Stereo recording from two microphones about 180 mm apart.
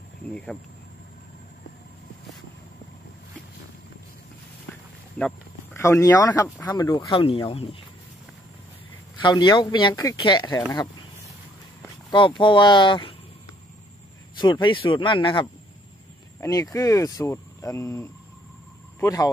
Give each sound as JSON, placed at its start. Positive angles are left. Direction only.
{"t": 0.3, "sound": "speech", "side_deg": 5}
{"t": 5.2, "sound": "speech", "side_deg": 10}
{"t": 9.2, "sound": "speech", "side_deg": 25}
{"t": 12.1, "sound": "speech", "side_deg": 25}
{"t": 14.4, "sound": "speech", "side_deg": 25}